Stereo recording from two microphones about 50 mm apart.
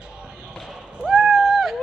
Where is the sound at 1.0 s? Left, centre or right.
Centre.